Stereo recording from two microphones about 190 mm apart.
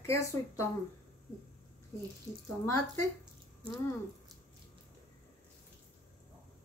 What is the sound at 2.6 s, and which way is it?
Speech, 15° left (ahead or behind).